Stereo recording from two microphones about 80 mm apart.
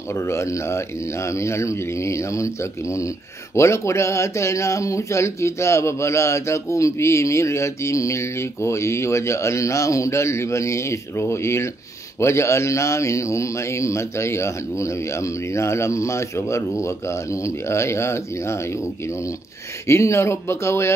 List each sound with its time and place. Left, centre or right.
0.1 s speech: left